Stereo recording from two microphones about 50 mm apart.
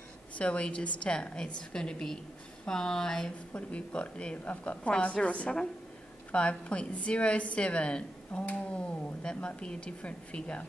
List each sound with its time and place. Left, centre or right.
0.4 s a woman's voice: left
3.5 s a woman's voice: left